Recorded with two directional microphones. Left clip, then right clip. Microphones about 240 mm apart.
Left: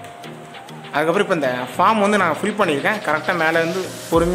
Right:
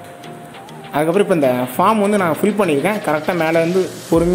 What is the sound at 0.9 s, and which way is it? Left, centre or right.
A man's voice, centre.